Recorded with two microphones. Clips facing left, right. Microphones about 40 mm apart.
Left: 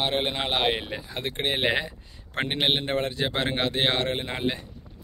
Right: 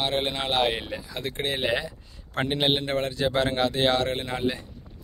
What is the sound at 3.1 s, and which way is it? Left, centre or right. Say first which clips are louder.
Speech: right 3 dB; left.